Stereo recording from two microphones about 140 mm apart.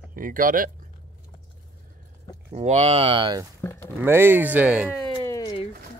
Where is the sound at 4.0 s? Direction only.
15° right (ahead or behind).